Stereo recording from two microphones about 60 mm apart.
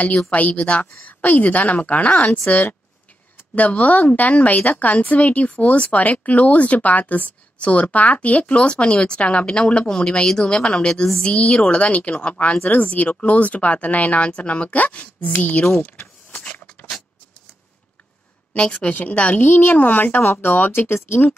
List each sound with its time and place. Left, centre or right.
0.3 s a woman's voice: left
16.3 s vehicle: left
18.5 s a woman's voice: centre; by 21.4 s left